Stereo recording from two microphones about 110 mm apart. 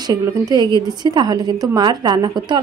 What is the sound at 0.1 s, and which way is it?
A woman's voice, 40° right (ahead or behind).